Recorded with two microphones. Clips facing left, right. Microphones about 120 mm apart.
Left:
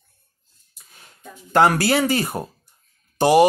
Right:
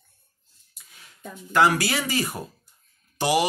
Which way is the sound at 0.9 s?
45° left (ahead or behind).